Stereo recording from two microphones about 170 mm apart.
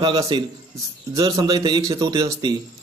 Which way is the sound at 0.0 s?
25° right (ahead or behind).